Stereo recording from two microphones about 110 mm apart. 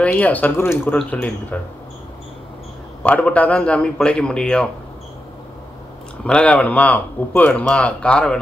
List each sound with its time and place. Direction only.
0.0 s speech: 15° left (ahead or behind)
3.0 s speech: 15° left (ahead or behind)
6.2 s speech: 10° left (ahead or behind)